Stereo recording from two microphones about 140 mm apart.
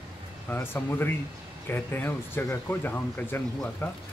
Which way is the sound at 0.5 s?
15° left (ahead or behind).